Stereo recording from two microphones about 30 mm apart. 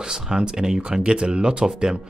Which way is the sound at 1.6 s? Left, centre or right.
Right.